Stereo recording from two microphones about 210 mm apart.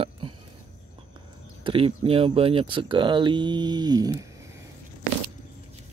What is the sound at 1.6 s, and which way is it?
Speech, 25° right (ahead or behind).